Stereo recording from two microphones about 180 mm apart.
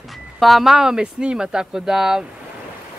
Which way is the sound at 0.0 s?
Centre (ahead or behind).